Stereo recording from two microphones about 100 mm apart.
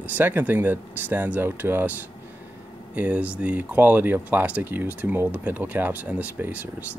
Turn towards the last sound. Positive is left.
turn(degrees=-20)  # may be behind; listen again after turning